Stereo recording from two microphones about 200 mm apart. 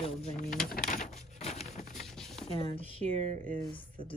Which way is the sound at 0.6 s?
45° left (ahead or behind).